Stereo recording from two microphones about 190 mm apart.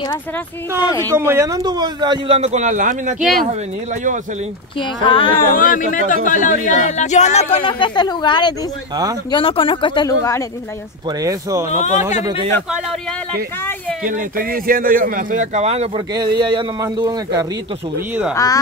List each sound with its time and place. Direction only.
0.7 s speech: 15° left (ahead or behind)
1.1 s a man's voice: 15° right (ahead or behind); by 3.2 s 40° right (ahead or behind)
3.2 s speech: centre (ahead or behind)
4.7 s speech: 25° left (ahead or behind)
5.5 s speech: 45° left (ahead or behind); by 10.4 s 15° left (ahead or behind)
11.1 s speech: 15° right (ahead or behind)
14.0 s speech: 45° right (ahead or behind)
16.2 s a man's voice: 25° right (ahead or behind)
18.3 s speech: 15° left (ahead or behind)